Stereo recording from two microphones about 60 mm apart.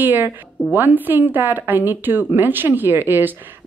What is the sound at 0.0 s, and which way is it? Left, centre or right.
Speech, right.